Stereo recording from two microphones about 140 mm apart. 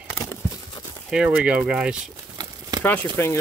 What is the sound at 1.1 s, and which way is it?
Speech, 10° right (ahead or behind).